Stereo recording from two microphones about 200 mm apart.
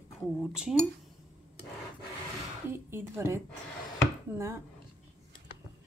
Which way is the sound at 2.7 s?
10° right (ahead or behind).